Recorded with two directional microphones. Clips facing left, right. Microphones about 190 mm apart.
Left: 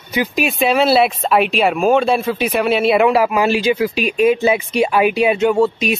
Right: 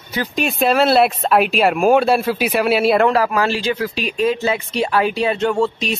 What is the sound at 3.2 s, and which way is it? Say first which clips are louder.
Speech: left 3 dB; 15° left (ahead or behind).